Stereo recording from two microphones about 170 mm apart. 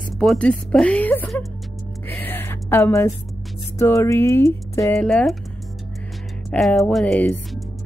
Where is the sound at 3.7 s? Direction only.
15° left (ahead or behind).